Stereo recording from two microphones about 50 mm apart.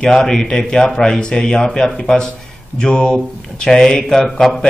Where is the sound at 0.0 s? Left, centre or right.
Centre.